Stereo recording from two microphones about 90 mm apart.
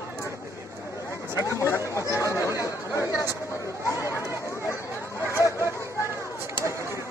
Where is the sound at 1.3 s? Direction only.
30° right (ahead or behind).